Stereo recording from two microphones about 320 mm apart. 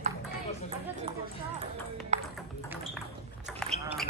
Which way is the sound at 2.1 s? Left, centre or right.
Right.